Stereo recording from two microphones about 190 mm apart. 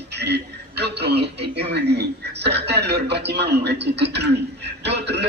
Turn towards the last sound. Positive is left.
turn(degrees=-60)  # may be behind; listen again after turning